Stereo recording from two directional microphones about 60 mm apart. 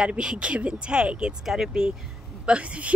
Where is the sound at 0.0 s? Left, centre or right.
Centre.